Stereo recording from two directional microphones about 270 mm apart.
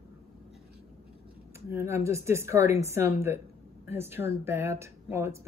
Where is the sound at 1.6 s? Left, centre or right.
Centre.